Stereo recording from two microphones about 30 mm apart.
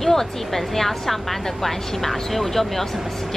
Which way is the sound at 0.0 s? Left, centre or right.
Centre.